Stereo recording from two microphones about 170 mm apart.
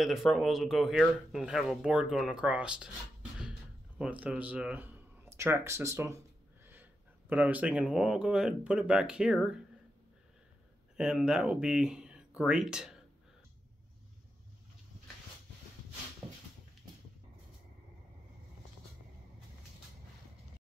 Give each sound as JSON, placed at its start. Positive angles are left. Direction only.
{"t": 0.0, "sound": "speech", "side_deg": 0}
{"t": 11.0, "sound": "speech", "side_deg": -5}